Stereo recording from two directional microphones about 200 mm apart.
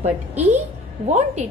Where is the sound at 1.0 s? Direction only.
35° right (ahead or behind).